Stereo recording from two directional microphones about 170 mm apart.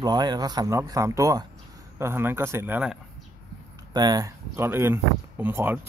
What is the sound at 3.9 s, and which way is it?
Speech, 25° right (ahead or behind).